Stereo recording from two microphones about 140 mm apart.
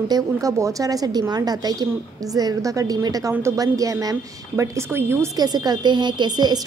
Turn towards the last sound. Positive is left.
turn(degrees=-30)  # may be behind; listen again after turning